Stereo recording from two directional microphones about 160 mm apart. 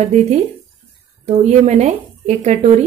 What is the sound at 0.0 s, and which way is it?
Speech, 45° right (ahead or behind).